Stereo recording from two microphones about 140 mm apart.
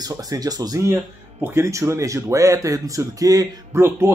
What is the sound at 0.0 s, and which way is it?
Speech, 25° right (ahead or behind).